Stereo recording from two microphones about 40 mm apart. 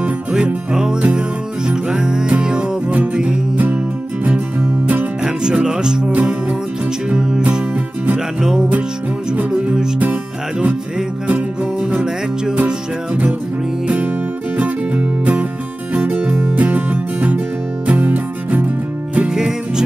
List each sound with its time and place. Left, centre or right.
0.7 s music: right
5.2 s music: right
8.4 s music: centre
11.2 s music: right
14.6 s music: right
19.1 s music: right